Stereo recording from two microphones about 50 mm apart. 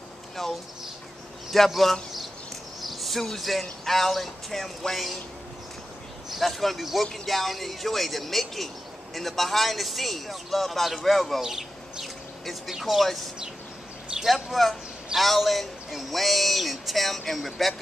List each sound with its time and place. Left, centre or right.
0.4 s a man's voice: centre
2.8 s a sound: centre
3.6 s speech: centre
6.3 s speech: centre
11.4 s speech: centre
14.2 s speech: centre